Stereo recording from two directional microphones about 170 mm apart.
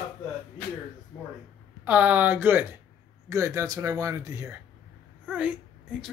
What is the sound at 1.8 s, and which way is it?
A man's voice, 10° right (ahead or behind).